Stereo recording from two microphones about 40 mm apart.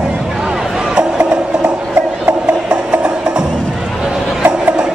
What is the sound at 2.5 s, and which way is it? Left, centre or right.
Music, right.